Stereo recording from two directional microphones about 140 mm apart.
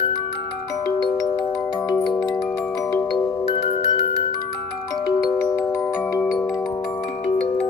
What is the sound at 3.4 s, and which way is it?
Music, 40° left (ahead or behind).